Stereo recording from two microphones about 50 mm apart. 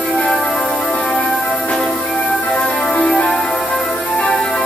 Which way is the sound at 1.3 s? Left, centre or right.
Centre.